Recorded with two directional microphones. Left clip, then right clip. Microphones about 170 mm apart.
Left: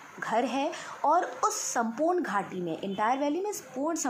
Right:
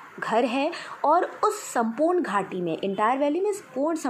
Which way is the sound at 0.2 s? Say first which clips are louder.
Right 5 dB; 15° right (ahead or behind).